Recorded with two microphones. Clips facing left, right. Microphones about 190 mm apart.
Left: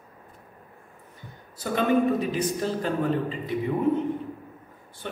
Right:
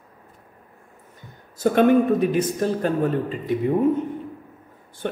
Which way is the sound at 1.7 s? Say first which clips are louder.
Right 5 dB; 55° right (ahead or behind).